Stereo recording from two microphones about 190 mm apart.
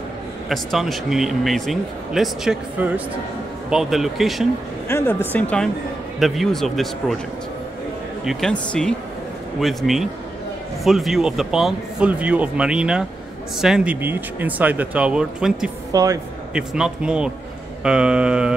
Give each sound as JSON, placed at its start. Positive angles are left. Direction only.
{"t": 0.5, "sound": "speech", "side_deg": 0}
{"t": 4.8, "sound": "speech", "side_deg": 10}
{"t": 8.3, "sound": "speech", "side_deg": 5}
{"t": 15.9, "sound": "speech", "side_deg": -20}
{"t": 16.5, "sound": "speech", "side_deg": -5}